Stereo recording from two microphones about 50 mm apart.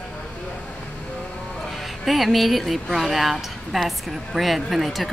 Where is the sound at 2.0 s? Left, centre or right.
Centre.